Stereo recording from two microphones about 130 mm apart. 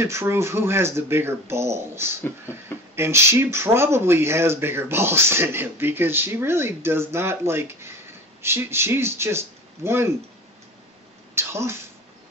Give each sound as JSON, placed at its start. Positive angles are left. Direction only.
{"t": 0.0, "sound": "speech", "side_deg": -20}
{"t": 11.3, "sound": "speech", "side_deg": -20}